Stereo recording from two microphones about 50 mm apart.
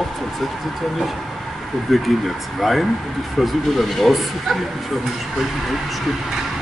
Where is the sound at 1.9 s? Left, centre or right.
Centre.